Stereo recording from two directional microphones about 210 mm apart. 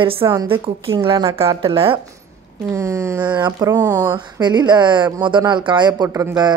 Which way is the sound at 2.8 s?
15° right (ahead or behind).